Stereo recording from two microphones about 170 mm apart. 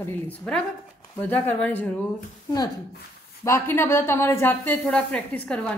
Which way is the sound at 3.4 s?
15° left (ahead or behind).